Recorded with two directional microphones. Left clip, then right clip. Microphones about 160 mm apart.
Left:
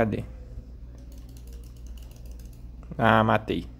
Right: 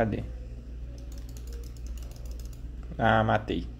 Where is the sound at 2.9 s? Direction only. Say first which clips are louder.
Left 3 dB; 20° left (ahead or behind).